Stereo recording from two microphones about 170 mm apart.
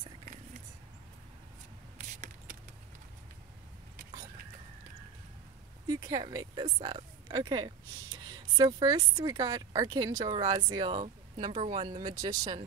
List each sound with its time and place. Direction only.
2.0 s a sound: 50° right (ahead or behind)
5.9 s a woman's voice: 20° right (ahead or behind)
11.5 s speech: 45° right (ahead or behind)
11.8 s a woman's voice: 25° right (ahead or behind)